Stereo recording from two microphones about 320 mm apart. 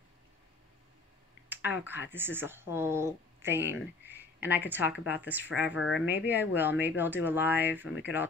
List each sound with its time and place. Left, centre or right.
1.5 s speech: centre
5.7 s speech: left
6.5 s speech: centre